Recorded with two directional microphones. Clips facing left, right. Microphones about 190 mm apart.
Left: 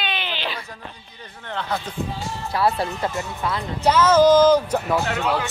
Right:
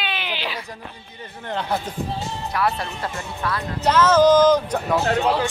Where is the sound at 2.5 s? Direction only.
30° left (ahead or behind).